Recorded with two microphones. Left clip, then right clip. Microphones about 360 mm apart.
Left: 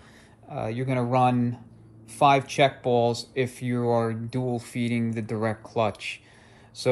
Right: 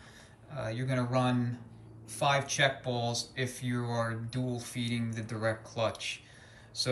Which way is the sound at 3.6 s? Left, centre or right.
Left.